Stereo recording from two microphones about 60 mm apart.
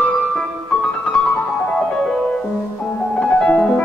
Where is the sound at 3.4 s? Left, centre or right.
Centre.